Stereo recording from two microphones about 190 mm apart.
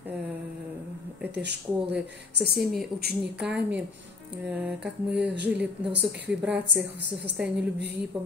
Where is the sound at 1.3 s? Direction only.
60° right (ahead or behind).